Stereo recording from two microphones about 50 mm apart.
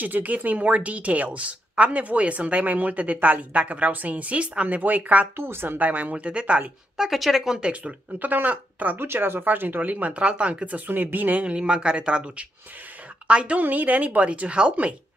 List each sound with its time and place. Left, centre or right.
0.0 s a woman's voice: right
5.3 s a woman's voice: right
5.8 s a woman's voice: right
7.0 s speech: centre
7.6 s a woman's voice: right
8.2 s speech: right
9.0 s speech: right
11.4 s a woman's voice: right
13.6 s speech: right